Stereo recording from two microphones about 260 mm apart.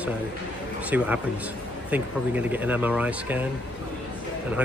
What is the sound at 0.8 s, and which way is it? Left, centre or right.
Speech, centre.